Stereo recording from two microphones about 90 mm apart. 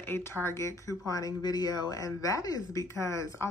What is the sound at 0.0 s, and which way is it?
A woman's voice, 25° left (ahead or behind).